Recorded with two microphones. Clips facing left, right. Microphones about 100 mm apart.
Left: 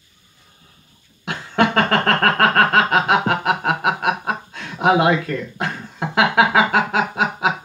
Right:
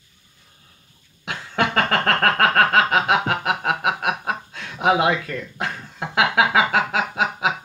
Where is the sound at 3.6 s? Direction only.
25° left (ahead or behind).